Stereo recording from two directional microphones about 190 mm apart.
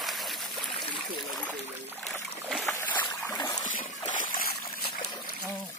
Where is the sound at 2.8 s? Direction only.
10° left (ahead or behind).